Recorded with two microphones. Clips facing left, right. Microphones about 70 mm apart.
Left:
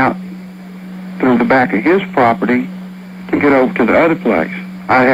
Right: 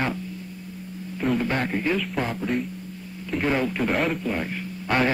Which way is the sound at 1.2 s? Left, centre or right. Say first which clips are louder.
Left 14 dB; left.